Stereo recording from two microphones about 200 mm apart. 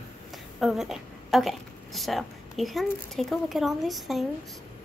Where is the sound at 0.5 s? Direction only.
Centre (ahead or behind).